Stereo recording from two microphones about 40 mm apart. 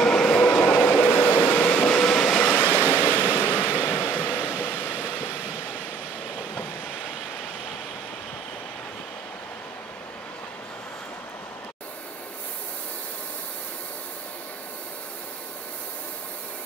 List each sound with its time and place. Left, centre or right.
0.0 s train: centre
0.7 s train: left; by 2.5 s centre
2.5 s waves: left
3.3 s vehicle: left
4.1 s train: left